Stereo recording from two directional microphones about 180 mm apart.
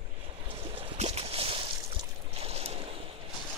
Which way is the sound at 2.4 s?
35° right (ahead or behind).